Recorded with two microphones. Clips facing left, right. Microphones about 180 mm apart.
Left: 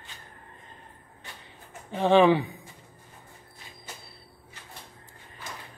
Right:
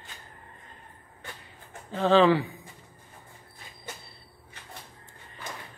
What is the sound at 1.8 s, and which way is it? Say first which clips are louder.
Speech: left 1 dB; 20° left (ahead or behind).